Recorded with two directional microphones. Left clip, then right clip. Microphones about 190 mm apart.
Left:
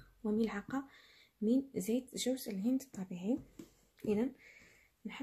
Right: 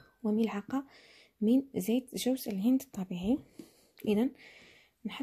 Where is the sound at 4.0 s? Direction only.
40° right (ahead or behind).